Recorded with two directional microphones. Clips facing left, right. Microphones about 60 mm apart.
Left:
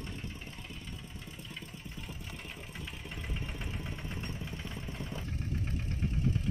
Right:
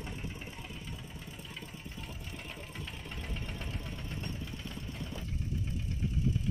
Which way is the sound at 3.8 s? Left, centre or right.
Left.